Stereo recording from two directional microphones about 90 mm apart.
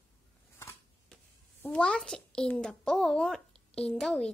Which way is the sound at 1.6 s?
10° left (ahead or behind).